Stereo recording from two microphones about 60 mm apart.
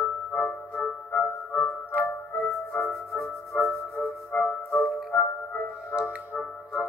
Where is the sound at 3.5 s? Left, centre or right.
Left.